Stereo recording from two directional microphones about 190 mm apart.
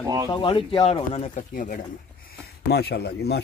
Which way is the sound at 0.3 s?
25° left (ahead or behind).